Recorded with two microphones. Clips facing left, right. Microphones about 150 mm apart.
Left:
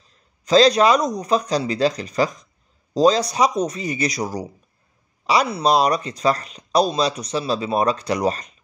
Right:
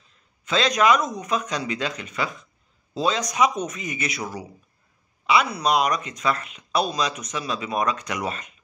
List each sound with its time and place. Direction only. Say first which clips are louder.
0.0 s speech: left 3 dB; 35° left (ahead or behind)